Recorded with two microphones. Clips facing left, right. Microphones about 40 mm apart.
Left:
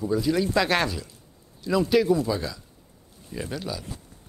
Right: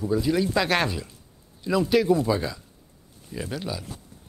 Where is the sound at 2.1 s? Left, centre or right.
Centre.